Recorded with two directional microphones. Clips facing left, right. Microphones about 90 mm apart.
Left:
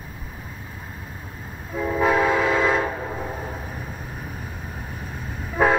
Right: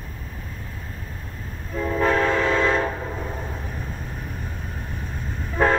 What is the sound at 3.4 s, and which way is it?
Vehicle, 5° left (ahead or behind).